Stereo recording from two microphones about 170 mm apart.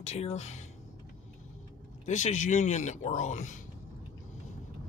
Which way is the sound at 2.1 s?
45° left (ahead or behind).